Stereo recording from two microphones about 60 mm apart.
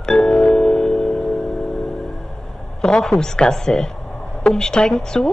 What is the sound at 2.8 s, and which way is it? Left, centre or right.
Speech, centre.